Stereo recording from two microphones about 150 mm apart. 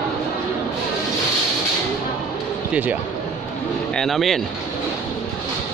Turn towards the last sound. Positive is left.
turn(degrees=0)  # may be behind; listen again after turning